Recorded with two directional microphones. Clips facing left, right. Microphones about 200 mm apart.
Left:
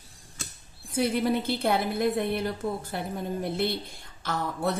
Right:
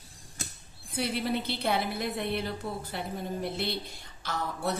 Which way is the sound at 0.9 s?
45° left (ahead or behind).